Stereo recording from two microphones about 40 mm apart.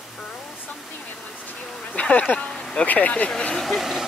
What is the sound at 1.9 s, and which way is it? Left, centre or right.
Speech, left.